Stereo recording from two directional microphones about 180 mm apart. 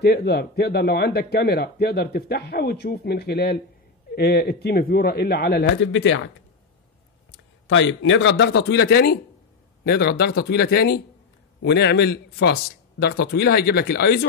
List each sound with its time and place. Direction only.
0.0 s speech: 65° left (ahead or behind); by 6.3 s 90° left
7.6 s a man's voice: 90° left; by 14.2 s 65° left (ahead or behind)